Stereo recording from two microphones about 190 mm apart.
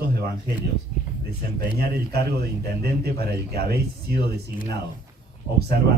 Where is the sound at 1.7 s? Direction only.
55° right (ahead or behind).